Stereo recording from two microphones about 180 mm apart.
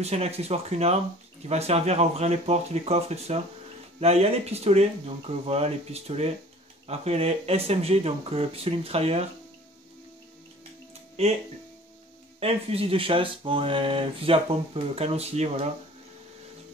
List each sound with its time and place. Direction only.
0.0 s speech: 35° right (ahead or behind)
11.2 s speech: 35° right (ahead or behind)
12.4 s speech: 35° right (ahead or behind)